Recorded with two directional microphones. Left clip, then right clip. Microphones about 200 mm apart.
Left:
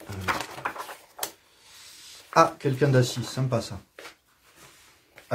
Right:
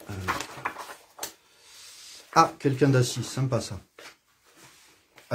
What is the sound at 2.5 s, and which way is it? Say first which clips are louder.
Speech: even; 35° right (ahead or behind).